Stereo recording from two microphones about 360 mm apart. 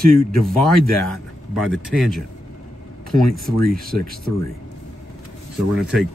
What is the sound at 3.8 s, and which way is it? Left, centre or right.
Speech, left.